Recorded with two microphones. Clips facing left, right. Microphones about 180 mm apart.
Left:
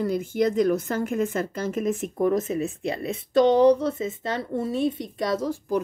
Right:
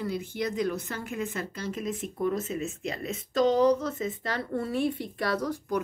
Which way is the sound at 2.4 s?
35° left (ahead or behind).